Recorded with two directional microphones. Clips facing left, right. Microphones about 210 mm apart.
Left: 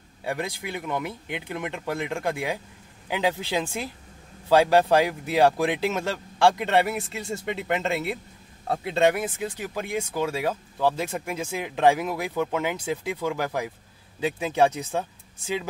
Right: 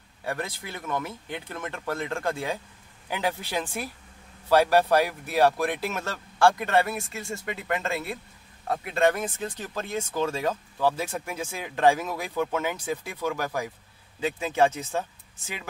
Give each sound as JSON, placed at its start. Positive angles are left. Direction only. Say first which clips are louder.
{"t": 0.2, "sound": "speech", "louder": "left 2 dB", "side_deg": 15}
{"t": 9.1, "sound": "speech", "louder": "left 2 dB", "side_deg": 10}